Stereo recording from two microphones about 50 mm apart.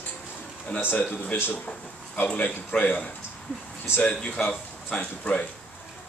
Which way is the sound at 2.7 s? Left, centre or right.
Left.